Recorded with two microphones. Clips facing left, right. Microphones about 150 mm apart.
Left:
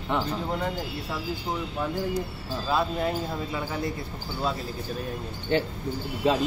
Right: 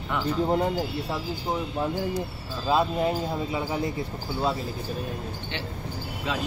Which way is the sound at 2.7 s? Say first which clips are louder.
Right 3 dB; 15° right (ahead or behind).